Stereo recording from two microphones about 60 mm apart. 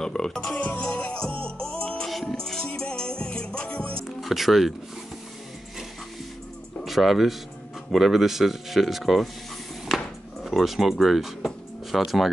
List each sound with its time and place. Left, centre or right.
0.0 s music: centre
0.6 s music: centre
4.2 s music: centre
6.8 s speech: centre
9.8 s music: centre